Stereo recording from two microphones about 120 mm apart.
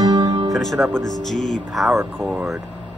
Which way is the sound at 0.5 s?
Centre (ahead or behind).